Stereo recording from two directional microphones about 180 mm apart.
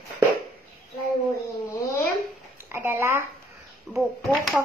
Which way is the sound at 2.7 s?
15° right (ahead or behind).